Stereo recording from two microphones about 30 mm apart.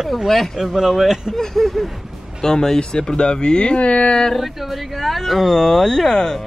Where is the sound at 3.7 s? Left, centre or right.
Left.